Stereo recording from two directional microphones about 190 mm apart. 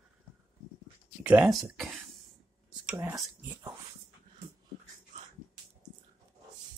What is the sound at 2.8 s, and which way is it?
Whispering, 10° right (ahead or behind).